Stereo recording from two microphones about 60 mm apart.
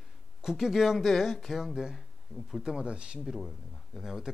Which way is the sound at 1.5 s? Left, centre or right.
Centre.